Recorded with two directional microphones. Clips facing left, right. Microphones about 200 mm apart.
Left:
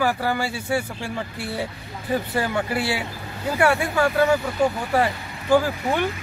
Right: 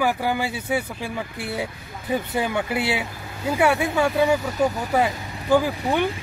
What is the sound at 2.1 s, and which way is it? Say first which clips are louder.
Speech: even; 20° right (ahead or behind).